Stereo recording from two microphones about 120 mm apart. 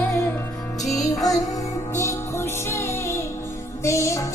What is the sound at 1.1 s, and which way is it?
Music, 30° left (ahead or behind).